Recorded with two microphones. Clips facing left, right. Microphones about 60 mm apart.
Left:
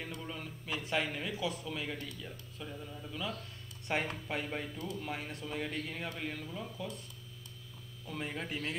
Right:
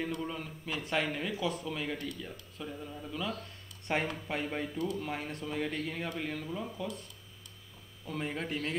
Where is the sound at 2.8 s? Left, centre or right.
Centre.